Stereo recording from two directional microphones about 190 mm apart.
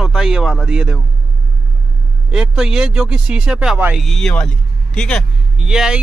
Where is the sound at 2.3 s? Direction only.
5° right (ahead or behind).